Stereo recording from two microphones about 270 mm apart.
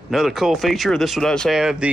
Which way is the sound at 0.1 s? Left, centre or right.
Centre.